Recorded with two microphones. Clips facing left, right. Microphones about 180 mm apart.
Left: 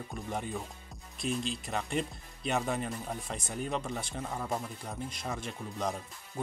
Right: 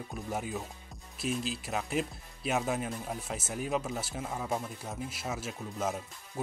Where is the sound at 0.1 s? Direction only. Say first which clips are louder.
Right 1 dB; 5° right (ahead or behind).